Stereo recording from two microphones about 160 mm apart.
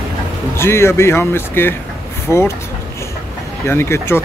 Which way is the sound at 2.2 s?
15° left (ahead or behind).